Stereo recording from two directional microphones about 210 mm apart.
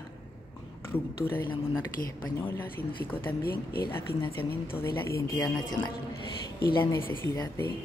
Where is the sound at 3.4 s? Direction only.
45° left (ahead or behind).